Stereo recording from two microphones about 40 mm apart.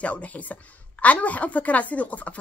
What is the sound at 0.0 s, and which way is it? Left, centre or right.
Speech, left.